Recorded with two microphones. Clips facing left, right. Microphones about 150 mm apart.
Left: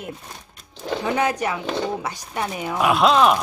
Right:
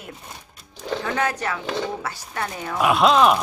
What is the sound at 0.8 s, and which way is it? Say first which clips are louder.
Speech: left 2 dB; 15° left (ahead or behind).